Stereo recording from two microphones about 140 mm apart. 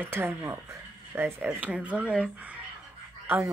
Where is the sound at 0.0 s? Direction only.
15° right (ahead or behind).